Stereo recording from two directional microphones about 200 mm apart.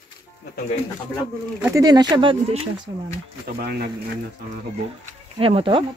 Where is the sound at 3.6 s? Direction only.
50° right (ahead or behind).